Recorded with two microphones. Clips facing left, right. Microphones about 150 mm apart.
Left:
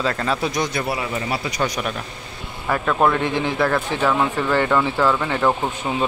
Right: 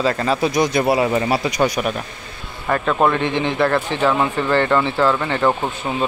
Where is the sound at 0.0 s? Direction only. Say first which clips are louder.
Right 4 dB; 5° right (ahead or behind).